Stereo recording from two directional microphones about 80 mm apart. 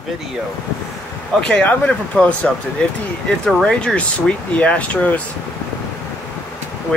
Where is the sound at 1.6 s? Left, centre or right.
Centre.